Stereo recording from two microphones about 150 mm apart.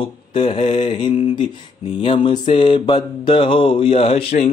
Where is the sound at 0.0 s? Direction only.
35° left (ahead or behind).